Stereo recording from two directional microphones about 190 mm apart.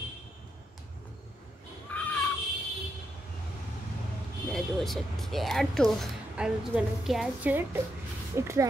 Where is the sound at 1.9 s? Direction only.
10° left (ahead or behind).